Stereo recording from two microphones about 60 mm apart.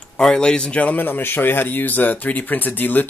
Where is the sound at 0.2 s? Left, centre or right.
Centre.